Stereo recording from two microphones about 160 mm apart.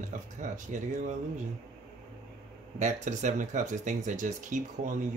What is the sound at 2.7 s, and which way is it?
Speech, 45° right (ahead or behind).